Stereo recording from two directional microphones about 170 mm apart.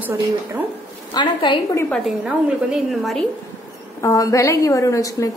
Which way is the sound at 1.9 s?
Centre (ahead or behind).